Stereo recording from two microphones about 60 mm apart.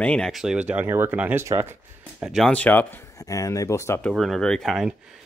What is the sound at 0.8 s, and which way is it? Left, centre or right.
Speech, right.